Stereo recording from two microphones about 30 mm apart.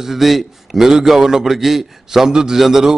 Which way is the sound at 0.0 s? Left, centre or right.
Centre.